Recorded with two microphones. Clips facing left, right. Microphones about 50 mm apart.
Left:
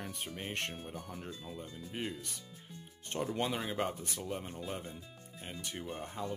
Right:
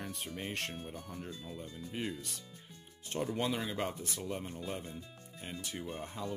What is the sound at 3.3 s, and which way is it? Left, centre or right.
Speech, centre.